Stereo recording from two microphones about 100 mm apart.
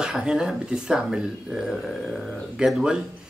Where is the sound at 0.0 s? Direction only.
5° right (ahead or behind).